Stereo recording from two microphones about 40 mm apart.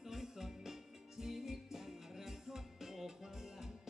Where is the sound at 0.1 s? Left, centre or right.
Centre.